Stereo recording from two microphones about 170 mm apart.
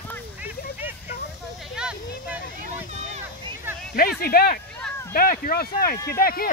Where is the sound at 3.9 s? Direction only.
65° left (ahead or behind).